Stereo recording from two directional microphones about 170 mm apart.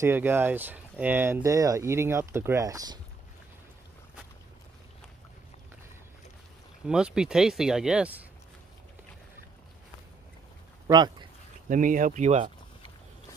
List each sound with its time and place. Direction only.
0.0 s speech: 15° right (ahead or behind)
6.9 s speech: 5° right (ahead or behind)
10.9 s speech: 25° right (ahead or behind)
11.7 s speech: 50° right (ahead or behind)